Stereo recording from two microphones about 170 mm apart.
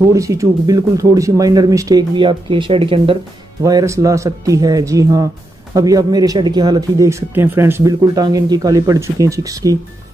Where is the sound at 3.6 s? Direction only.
20° right (ahead or behind).